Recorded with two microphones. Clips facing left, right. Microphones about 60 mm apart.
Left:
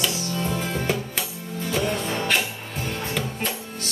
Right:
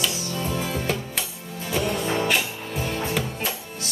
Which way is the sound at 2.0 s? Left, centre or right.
Centre.